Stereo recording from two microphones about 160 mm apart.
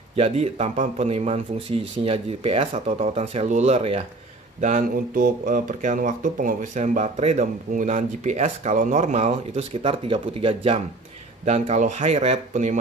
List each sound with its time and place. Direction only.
0.1 s speech: 40° right (ahead or behind)
4.6 s speech: 50° right (ahead or behind)